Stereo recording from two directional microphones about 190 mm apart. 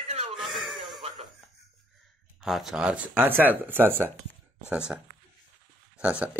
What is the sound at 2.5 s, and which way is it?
Speech, centre (ahead or behind).